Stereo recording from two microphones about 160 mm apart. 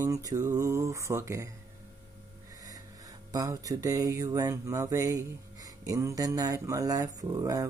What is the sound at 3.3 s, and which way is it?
Mantra, 20° right (ahead or behind).